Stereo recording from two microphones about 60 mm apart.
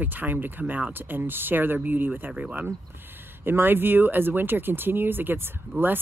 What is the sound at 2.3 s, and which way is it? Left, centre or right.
Speech, right.